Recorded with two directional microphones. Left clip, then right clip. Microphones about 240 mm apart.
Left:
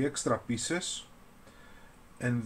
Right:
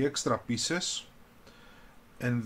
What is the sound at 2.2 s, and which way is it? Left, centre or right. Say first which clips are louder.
Speech: right 1 dB; centre.